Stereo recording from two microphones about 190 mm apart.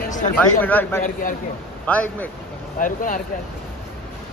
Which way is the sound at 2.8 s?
45° left (ahead or behind).